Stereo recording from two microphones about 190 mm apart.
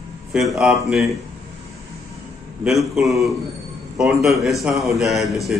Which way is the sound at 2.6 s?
Centre (ahead or behind).